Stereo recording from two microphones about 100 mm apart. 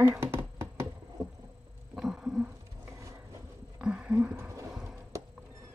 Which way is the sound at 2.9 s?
30° right (ahead or behind).